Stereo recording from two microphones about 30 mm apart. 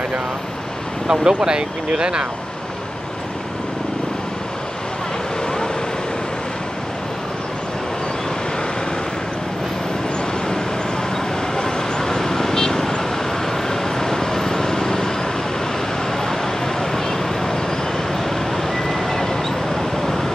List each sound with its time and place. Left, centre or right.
1.0 s speech: right
11.5 s vehicle: centre